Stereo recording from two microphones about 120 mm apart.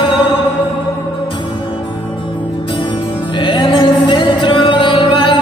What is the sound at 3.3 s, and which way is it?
Music, 40° left (ahead or behind).